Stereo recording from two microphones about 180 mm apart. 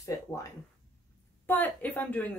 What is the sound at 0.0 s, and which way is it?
Speech, 15° left (ahead or behind).